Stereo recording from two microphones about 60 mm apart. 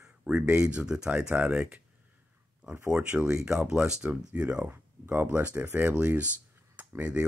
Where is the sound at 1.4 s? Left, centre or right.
Right.